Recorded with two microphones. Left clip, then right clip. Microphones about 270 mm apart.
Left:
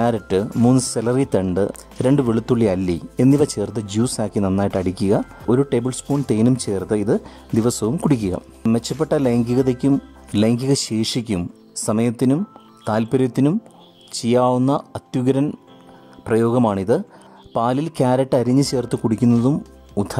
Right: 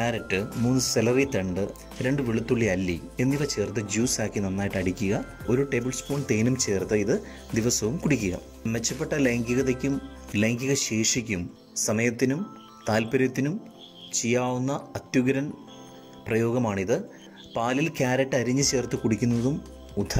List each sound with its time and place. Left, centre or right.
0.0 s speech: centre